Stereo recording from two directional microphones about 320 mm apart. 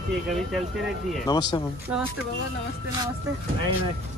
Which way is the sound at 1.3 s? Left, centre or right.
Centre.